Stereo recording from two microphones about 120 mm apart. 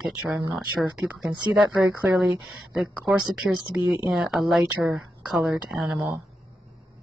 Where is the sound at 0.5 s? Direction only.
5° right (ahead or behind).